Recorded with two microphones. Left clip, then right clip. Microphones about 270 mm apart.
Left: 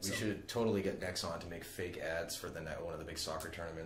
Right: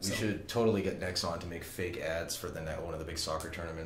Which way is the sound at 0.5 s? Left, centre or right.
Centre.